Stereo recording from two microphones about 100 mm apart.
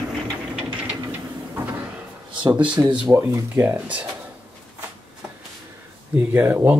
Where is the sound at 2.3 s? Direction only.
50° right (ahead or behind).